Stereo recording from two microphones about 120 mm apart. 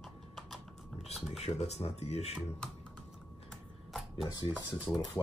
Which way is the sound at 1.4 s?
65° left (ahead or behind).